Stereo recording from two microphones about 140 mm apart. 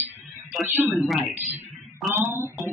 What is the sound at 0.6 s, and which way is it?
Speech, 15° right (ahead or behind).